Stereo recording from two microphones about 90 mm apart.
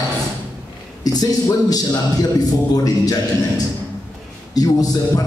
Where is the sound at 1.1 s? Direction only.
45° left (ahead or behind).